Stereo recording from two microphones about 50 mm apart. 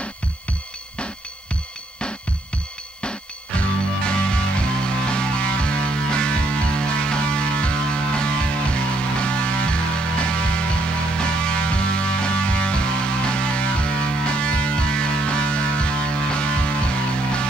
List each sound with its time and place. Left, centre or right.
3.0 s music: left